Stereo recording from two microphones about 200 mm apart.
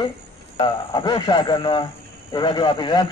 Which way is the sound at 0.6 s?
25° left (ahead or behind).